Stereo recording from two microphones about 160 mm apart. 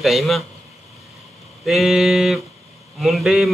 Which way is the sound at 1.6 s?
Centre (ahead or behind).